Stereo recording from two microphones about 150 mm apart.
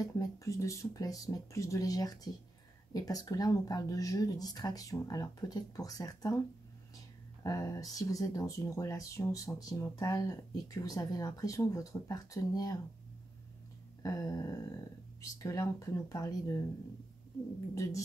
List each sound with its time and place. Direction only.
0.0 s speech: 20° left (ahead or behind)
7.4 s speech: 20° left (ahead or behind)
14.0 s speech: 25° left (ahead or behind)